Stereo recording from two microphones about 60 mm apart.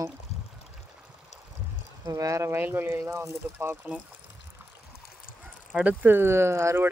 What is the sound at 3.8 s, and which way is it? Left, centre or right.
Speech, right.